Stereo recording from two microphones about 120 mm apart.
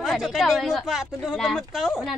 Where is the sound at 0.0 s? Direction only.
Centre (ahead or behind).